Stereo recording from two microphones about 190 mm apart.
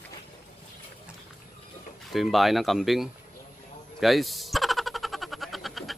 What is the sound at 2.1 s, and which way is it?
Speech, centre (ahead or behind).